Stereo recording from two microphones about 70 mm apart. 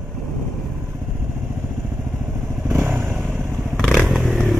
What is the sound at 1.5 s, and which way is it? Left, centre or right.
Vehicle, right.